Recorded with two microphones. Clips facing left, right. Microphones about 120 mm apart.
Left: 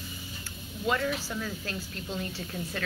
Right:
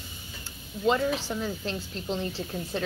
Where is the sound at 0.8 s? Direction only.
20° right (ahead or behind).